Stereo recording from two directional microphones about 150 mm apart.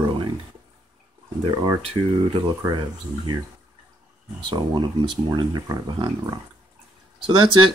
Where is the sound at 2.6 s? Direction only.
30° right (ahead or behind).